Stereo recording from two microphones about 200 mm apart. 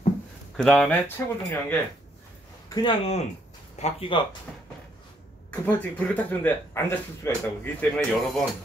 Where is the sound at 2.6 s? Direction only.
20° left (ahead or behind).